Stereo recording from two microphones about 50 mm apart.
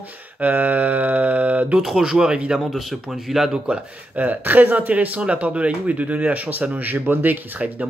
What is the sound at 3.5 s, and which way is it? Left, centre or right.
Speech, right.